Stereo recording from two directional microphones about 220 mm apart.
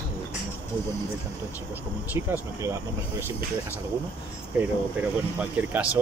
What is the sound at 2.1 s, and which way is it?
Speech, 10° right (ahead or behind).